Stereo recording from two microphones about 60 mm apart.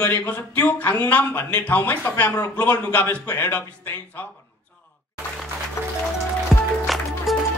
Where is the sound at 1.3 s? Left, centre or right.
Left.